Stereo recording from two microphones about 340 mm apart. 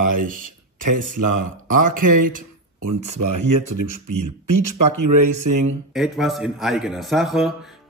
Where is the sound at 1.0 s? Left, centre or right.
Right.